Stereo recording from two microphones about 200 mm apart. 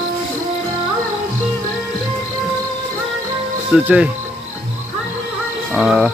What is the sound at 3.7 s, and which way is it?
Speech, 5° right (ahead or behind).